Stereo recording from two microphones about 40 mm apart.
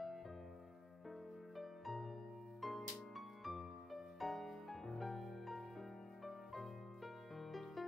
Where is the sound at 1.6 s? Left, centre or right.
Centre.